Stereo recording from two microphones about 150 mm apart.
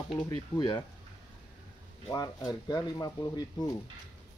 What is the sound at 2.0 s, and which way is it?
Speech, 25° left (ahead or behind).